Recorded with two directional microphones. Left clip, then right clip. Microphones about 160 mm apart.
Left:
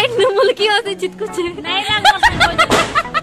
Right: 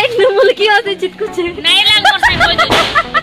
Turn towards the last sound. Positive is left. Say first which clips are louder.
# right 4 dB
turn(degrees=15)  # may be behind; listen again after turning